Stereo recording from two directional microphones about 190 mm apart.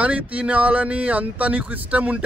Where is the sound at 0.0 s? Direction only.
5° right (ahead or behind).